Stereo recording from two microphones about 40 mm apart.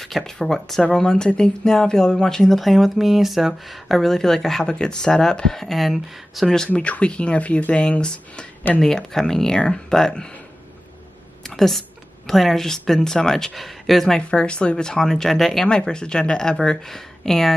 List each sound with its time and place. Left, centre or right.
0.0 s speech: centre
4.6 s speech: centre
5.6 s speech: centre
6.7 s speech: left
8.8 s speech: centre
11.4 s a sound: centre
12.3 s speech: centre
14.1 s speech: left; by 15.6 s centre
15.9 s speech: left